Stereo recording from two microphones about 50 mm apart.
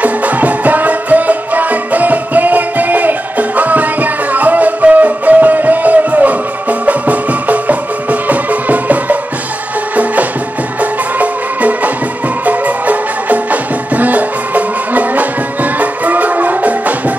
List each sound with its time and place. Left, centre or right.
0.0 s music: right
10.8 s music: right